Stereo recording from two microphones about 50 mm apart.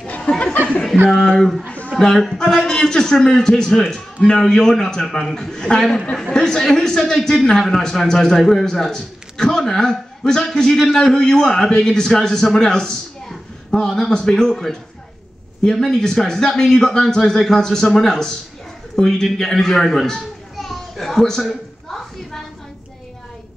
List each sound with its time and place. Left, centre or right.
0.3 s a sound: left
1.1 s a man's voice: centre
2.0 s a man's voice: centre
19.0 s children playing: centre